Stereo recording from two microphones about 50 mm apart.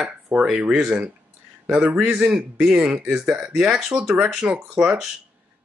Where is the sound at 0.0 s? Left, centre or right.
Centre.